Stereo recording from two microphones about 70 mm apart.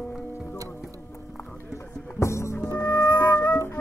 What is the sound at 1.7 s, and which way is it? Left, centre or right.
Music, left.